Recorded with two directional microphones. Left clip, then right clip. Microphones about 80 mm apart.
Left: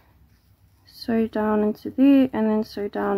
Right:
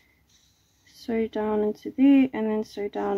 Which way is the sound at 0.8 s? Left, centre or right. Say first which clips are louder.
Left 3 dB; left.